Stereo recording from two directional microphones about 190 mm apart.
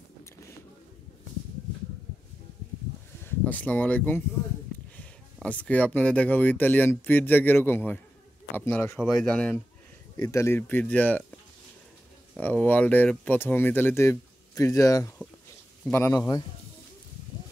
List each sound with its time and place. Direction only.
3.3 s speech: 10° left (ahead or behind)
10.1 s speech: 15° left (ahead or behind)
12.4 s speech: 10° left (ahead or behind)